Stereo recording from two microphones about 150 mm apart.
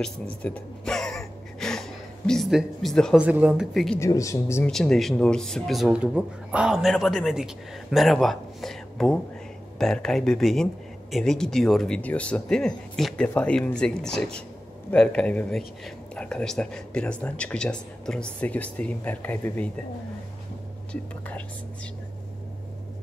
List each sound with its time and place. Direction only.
0.0 s a sound: 10° left (ahead or behind)
3.2 s speech: 10° right (ahead or behind)
3.7 s speech: centre (ahead or behind)
4.0 s speech: 20° left (ahead or behind)
4.6 s speech: 5° left (ahead or behind)
20.9 s speech: 10° left (ahead or behind)